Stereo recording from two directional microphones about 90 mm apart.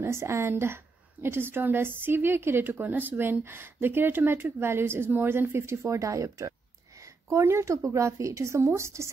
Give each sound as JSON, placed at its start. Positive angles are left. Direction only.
{"t": 0.0, "sound": "a woman's voice", "side_deg": -30}